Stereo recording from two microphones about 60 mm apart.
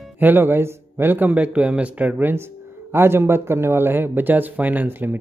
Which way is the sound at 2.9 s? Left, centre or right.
Right.